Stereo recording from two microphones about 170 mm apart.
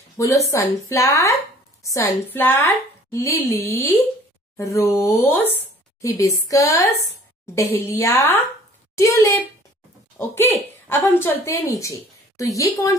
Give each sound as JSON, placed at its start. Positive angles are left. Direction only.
{"t": 0.5, "sound": "a woman's voice", "side_deg": 20}